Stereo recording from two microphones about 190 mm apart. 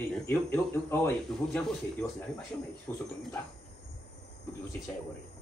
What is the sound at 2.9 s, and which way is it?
Speech, 15° left (ahead or behind).